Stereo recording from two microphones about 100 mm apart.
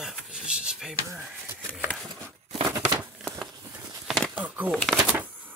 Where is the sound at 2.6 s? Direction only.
30° right (ahead or behind).